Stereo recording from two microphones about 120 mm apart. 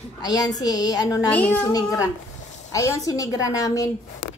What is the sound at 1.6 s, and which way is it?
A woman's voice, 30° left (ahead or behind).